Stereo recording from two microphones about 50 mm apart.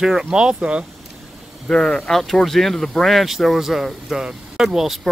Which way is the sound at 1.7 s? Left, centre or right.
Centre.